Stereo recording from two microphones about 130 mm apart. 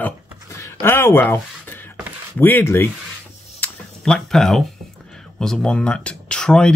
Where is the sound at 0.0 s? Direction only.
25° left (ahead or behind).